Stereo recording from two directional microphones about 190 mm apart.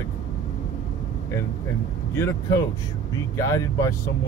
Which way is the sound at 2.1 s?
15° left (ahead or behind).